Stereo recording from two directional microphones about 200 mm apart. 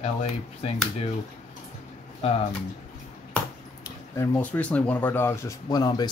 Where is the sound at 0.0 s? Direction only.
30° left (ahead or behind).